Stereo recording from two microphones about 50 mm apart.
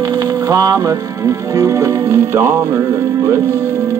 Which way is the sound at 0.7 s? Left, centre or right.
Right.